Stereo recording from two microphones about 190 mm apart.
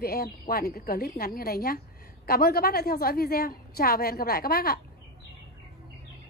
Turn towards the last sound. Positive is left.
turn(degrees=50)  # may be behind; listen again after turning